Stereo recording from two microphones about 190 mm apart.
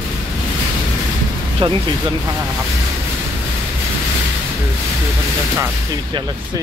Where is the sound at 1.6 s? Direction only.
25° right (ahead or behind).